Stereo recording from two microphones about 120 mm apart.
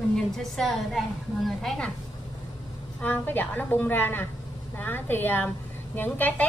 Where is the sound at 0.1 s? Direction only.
Centre (ahead or behind).